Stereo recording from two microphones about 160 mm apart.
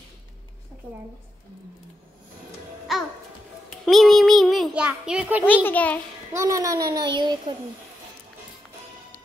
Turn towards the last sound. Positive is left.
turn(degrees=-30)  # may be behind; listen again after turning